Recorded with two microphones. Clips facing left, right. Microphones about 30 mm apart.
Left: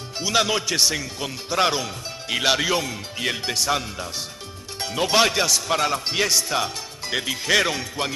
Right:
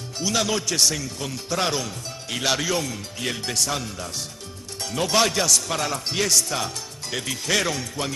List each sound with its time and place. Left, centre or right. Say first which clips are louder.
0.2 s speech: left 3 dB; left